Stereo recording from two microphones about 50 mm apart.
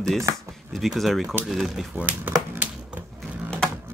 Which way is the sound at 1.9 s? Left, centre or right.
Right.